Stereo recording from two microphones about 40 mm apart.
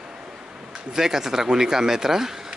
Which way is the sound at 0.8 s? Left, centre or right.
Centre.